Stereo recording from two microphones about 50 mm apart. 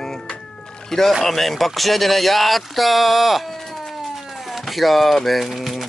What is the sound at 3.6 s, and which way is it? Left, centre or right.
Cat, centre.